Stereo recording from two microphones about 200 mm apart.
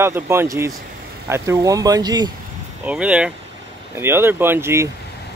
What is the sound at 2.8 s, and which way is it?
Speech, 5° right (ahead or behind).